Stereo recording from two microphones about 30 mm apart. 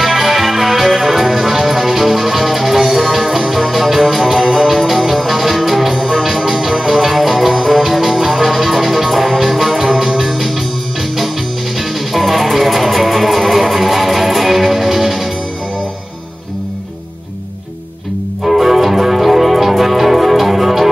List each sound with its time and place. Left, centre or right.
0.0 s music: centre
12.1 s music: centre
18.4 s music: centre